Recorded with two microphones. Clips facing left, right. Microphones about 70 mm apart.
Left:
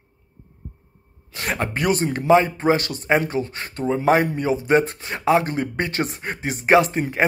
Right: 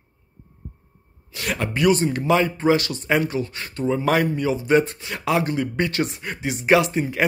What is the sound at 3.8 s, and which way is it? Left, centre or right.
Speech, left.